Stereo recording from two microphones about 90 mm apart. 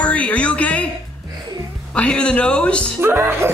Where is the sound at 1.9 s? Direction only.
10° left (ahead or behind).